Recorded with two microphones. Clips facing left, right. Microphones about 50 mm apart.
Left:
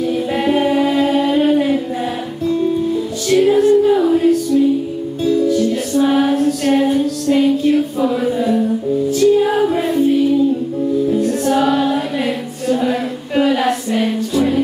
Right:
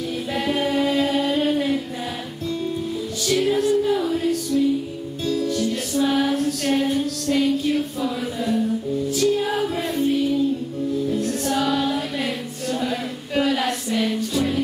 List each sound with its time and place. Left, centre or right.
0.1 s a capella: centre
3.6 s music: left
5.2 s music: centre
5.9 s female singing: left
6.3 s a sound: centre
9.2 s music: centre
9.8 s music: centre
11.5 s a sound: centre